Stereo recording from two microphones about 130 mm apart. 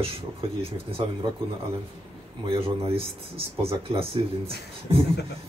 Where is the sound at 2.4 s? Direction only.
45° right (ahead or behind).